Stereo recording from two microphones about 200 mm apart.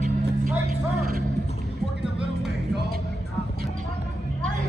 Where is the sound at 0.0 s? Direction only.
35° right (ahead or behind).